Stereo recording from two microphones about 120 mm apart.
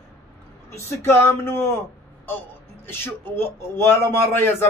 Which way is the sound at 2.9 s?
20° left (ahead or behind).